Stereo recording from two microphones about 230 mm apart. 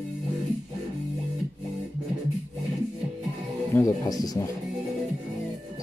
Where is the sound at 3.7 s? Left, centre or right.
Centre.